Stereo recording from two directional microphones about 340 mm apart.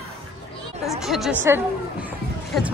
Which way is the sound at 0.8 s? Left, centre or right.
Centre.